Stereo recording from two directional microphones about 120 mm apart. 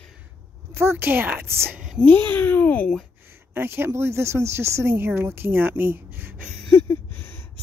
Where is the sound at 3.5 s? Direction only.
20° right (ahead or behind).